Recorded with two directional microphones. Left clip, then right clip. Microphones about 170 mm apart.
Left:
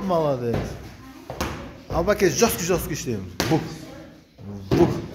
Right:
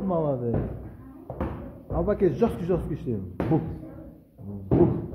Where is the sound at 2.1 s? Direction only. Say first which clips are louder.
Left 4 dB; 15° left (ahead or behind).